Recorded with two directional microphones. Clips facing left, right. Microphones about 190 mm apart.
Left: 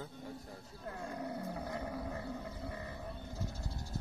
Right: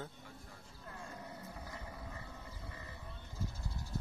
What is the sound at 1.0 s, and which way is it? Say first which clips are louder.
Wild animals: left 9 dB; 60° left (ahead or behind).